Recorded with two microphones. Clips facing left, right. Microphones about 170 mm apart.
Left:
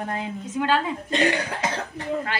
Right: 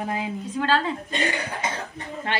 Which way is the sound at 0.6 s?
15° left (ahead or behind).